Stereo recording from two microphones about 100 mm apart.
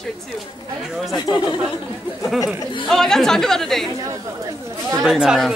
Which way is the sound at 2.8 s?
5° left (ahead or behind).